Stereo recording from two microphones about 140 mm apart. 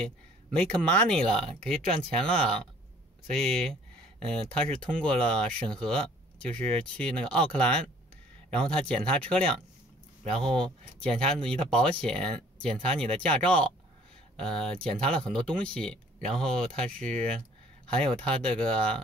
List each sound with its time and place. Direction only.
0.0 s speech: 10° left (ahead or behind)